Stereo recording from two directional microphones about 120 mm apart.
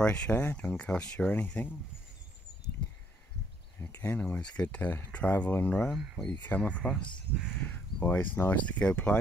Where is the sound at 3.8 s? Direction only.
20° left (ahead or behind).